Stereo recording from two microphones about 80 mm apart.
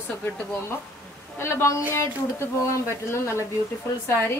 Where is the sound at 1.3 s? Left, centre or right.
Left.